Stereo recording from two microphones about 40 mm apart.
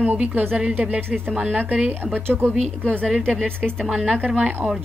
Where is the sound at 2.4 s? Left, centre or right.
Left.